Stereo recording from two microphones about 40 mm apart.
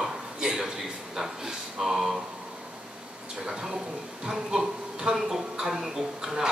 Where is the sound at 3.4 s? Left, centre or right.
Centre.